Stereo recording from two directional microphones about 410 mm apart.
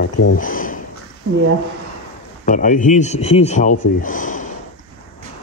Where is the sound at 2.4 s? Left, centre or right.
Centre.